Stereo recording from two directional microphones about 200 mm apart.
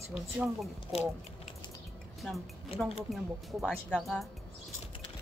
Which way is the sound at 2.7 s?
30° left (ahead or behind).